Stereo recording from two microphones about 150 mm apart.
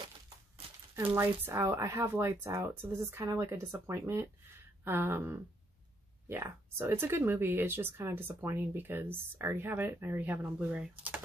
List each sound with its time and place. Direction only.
0.9 s speech: 15° right (ahead or behind)